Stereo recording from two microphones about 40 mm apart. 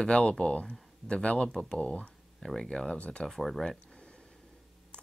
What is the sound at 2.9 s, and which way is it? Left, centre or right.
Speech, left.